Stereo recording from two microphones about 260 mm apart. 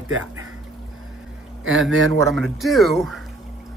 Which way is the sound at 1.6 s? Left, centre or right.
Right.